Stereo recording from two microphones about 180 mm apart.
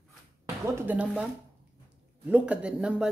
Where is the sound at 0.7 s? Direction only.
10° right (ahead or behind).